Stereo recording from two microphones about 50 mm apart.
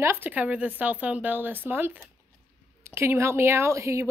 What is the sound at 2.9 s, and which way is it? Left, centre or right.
Speech, right.